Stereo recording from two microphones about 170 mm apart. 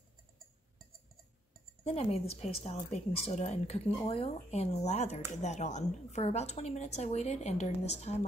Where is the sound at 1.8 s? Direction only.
35° left (ahead or behind).